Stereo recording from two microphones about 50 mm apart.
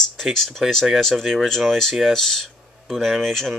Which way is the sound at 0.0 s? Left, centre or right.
Centre.